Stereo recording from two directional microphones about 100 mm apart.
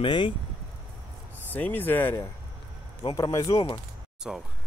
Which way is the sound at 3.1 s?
35° left (ahead or behind).